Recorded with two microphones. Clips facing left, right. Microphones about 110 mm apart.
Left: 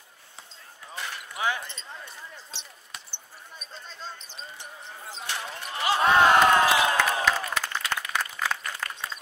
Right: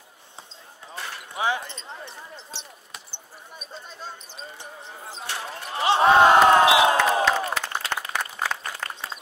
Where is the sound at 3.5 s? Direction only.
10° right (ahead or behind).